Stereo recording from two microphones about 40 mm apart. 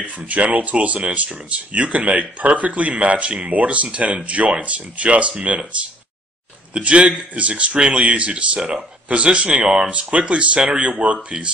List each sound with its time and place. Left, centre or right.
0.2 s a man's voice: right